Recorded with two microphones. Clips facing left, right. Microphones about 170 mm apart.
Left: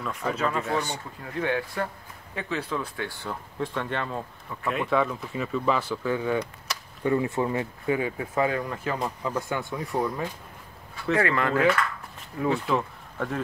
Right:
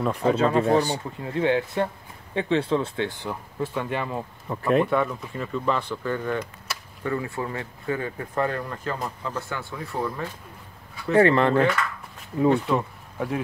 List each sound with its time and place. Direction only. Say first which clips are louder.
0.0 s speech: right 7 dB; 30° right (ahead or behind)
3.5 s speech: right 2 dB; 5° right (ahead or behind)
4.5 s speech: right 9 dB; 40° right (ahead or behind)
4.8 s speech: right 1 dB; centre (ahead or behind)
7.0 s speech: left 4 dB; 20° left (ahead or behind)
11.1 s speech: right 7 dB; 30° right (ahead or behind)
12.4 s speech: right 4 dB; centre (ahead or behind)